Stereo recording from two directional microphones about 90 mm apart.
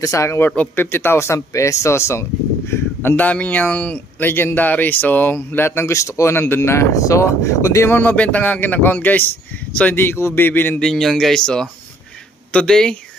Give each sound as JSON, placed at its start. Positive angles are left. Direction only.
{"t": 0.0, "sound": "speech", "side_deg": 35}
{"t": 10.8, "sound": "speech", "side_deg": 5}